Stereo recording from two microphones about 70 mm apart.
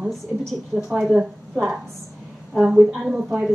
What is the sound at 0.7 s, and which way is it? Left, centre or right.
Speech, centre.